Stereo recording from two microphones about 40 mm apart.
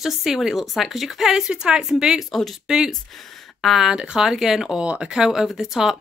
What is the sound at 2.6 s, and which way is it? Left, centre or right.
Speech, centre.